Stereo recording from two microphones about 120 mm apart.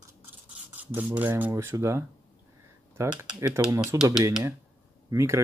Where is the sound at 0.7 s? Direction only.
15° right (ahead or behind).